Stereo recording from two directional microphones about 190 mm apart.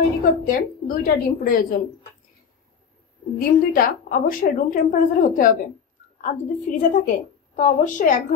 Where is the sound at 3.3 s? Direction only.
45° left (ahead or behind).